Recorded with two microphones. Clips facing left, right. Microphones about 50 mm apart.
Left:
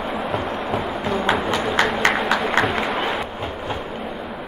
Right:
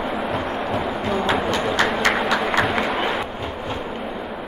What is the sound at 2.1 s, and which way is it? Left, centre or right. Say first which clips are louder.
Applause: even; centre.